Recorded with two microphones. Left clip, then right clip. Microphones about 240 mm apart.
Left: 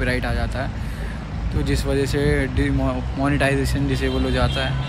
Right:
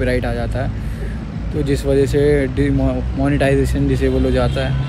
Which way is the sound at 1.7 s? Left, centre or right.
Centre.